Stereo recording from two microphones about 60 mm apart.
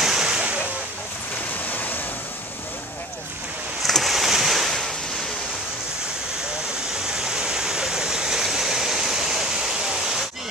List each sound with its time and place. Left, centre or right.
0.0 s waves: centre
1.7 s waves: left
3.8 s a sound: centre
7.1 s stream: centre